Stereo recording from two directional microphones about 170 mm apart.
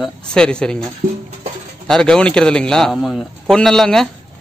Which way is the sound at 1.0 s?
50° right (ahead or behind).